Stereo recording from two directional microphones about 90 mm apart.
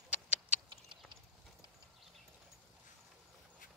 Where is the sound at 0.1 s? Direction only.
15° right (ahead or behind).